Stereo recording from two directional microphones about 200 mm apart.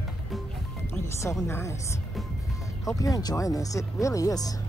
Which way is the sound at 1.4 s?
15° left (ahead or behind).